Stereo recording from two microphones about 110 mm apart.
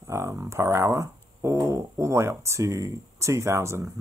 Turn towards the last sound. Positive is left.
turn(degrees=-25)  # may be behind; listen again after turning